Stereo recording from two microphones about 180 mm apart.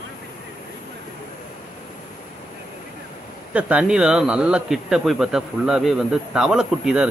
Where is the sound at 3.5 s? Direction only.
5° right (ahead or behind).